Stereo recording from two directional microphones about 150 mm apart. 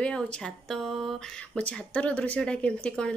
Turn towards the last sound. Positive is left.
turn(degrees=5)  # may be behind; listen again after turning